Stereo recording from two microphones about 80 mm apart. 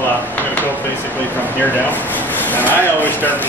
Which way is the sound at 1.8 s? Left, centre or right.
Left.